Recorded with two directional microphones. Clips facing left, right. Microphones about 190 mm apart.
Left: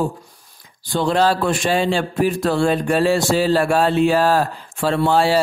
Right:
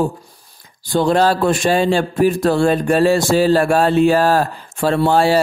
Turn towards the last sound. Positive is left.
turn(degrees=-45)  # may be behind; listen again after turning